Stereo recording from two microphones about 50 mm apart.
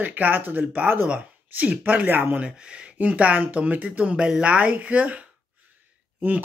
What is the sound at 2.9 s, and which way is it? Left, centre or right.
Speech, right.